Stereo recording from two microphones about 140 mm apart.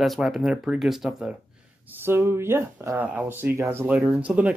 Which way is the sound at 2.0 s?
15° right (ahead or behind).